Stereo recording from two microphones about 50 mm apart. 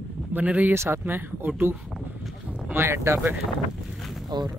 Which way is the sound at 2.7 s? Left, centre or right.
Right.